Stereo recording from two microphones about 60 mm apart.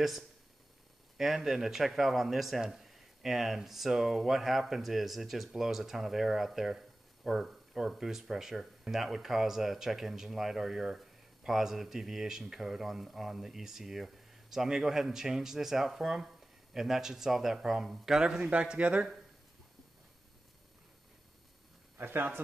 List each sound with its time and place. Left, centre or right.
1.1 s speech: centre; by 19.0 s right
21.9 s a man's voice: right